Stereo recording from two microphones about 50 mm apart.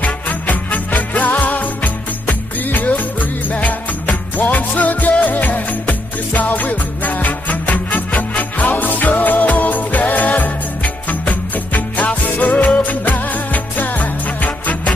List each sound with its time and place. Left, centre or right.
0.0 s music: left